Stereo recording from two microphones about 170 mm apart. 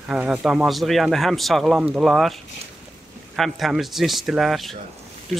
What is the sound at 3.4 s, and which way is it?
Speech, centre (ahead or behind).